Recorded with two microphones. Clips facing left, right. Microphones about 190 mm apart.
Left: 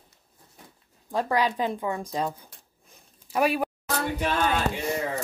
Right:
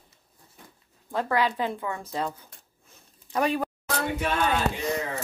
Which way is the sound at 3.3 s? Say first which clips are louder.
Left 1 dB; 10° left (ahead or behind).